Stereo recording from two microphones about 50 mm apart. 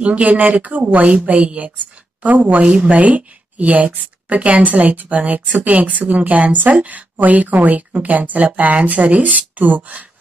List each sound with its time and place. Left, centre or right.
0.0 s speech: right